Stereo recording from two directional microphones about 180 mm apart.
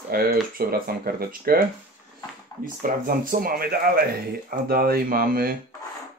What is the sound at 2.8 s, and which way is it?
Speech, 50° right (ahead or behind).